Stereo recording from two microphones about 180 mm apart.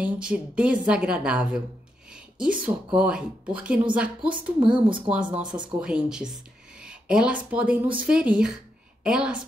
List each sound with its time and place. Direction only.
0.0 s a woman's voice: 5° right (ahead or behind)
2.1 s a sound: 5° right (ahead or behind)
3.0 s speech: 5° right (ahead or behind)
4.6 s speech: 25° right (ahead or behind)
5.1 s a woman's voice: 5° right (ahead or behind)